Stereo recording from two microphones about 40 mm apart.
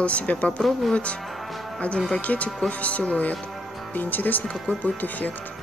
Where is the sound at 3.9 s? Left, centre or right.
Left.